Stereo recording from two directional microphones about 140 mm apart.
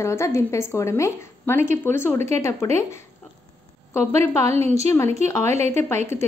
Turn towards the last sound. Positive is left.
turn(degrees=20)  # may be behind; listen again after turning